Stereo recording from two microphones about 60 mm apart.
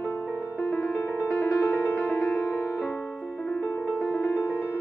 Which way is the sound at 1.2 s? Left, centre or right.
Left.